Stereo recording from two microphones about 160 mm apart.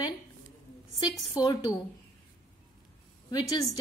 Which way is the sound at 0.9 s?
20° left (ahead or behind).